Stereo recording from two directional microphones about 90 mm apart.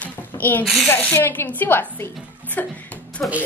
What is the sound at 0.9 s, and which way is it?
A woman's voice, 25° left (ahead or behind).